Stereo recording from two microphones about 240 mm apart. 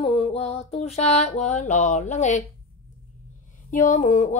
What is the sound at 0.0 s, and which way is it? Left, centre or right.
Music, left.